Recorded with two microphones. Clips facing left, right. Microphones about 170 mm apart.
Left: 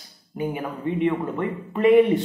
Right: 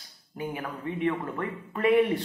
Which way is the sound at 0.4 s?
15° left (ahead or behind).